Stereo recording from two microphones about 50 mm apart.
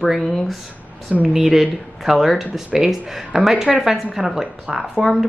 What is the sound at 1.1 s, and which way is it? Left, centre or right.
Speech, right.